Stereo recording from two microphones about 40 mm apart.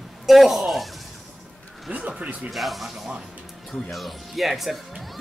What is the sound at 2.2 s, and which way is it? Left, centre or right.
Speech, right.